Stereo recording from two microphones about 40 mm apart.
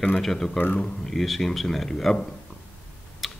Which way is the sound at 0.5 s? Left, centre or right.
Left.